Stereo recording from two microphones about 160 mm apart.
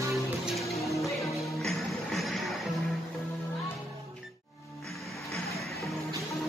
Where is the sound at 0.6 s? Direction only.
Centre (ahead or behind).